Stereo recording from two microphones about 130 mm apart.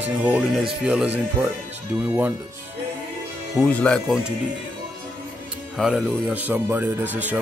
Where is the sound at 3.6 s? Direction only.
10° left (ahead or behind).